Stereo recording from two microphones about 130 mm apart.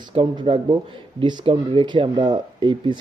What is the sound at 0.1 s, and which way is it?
Speech, 40° right (ahead or behind).